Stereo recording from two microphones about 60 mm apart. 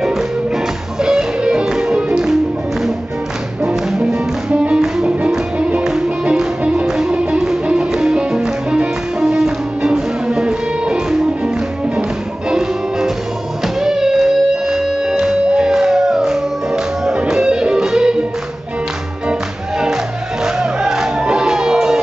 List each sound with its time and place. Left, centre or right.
1.0 s music: centre
4.0 s music: centre
20.5 s music: centre